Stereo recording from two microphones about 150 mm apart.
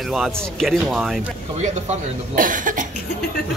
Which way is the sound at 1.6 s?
55° right (ahead or behind).